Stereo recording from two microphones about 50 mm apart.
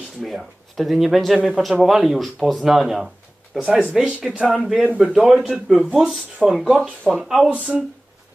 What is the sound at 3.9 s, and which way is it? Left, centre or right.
Speech, right.